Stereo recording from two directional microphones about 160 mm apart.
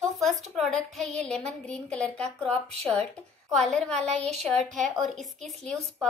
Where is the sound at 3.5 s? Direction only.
Centre (ahead or behind).